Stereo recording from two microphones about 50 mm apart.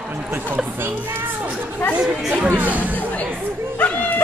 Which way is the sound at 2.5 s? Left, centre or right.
Right.